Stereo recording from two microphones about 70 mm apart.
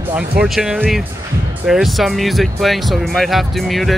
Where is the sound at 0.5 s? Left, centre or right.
Centre.